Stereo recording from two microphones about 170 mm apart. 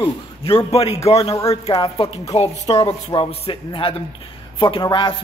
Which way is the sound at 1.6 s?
35° left (ahead or behind).